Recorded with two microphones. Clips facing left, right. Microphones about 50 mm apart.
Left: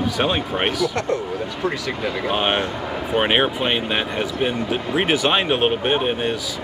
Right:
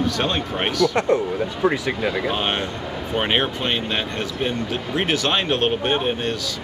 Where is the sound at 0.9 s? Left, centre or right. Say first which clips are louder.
Right 3 dB; right.